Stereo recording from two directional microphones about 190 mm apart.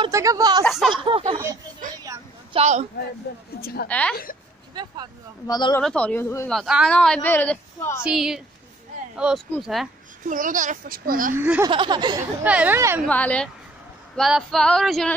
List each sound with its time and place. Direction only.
0.1 s a sound: 15° right (ahead or behind)
0.7 s speech: centre (ahead or behind)
1.0 s a sound: 30° right (ahead or behind)
2.5 s speech: 35° right (ahead or behind)
3.3 s speech: 60° left (ahead or behind)
3.9 s a woman's voice: 5° left (ahead or behind)
5.5 s speech: 20° left (ahead or behind)
5.8 s a woman's voice: 5° left (ahead or behind)
8.0 s speech: centre (ahead or behind)
10.2 s a child's voice: 45° right (ahead or behind)
11.3 s speech: 10° right (ahead or behind)
11.6 s a sound: 25° right (ahead or behind)
12.4 s speech: 10° right (ahead or behind)
13.1 s a woman's voice: 5° left (ahead or behind)